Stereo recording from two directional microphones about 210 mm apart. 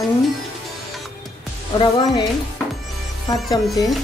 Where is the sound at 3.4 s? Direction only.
20° left (ahead or behind).